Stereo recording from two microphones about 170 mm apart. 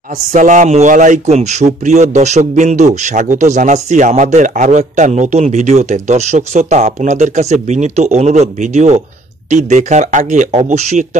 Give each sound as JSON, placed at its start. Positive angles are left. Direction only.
{"t": 0.3, "sound": "a man's voice", "side_deg": -50}